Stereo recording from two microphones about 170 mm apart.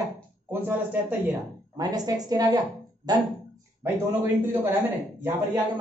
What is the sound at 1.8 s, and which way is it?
A woman's voice, 20° right (ahead or behind).